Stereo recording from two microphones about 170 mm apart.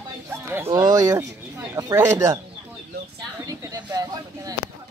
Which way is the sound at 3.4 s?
20° right (ahead or behind).